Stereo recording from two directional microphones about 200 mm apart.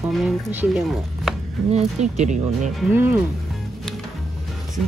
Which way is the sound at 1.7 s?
35° right (ahead or behind).